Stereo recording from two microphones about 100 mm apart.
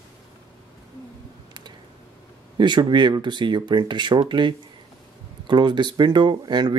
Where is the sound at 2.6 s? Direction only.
50° right (ahead or behind).